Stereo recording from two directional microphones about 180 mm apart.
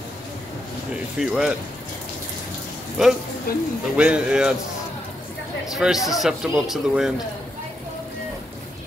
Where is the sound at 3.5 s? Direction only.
55° left (ahead or behind).